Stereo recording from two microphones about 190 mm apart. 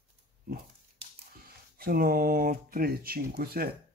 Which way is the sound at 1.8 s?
50° right (ahead or behind).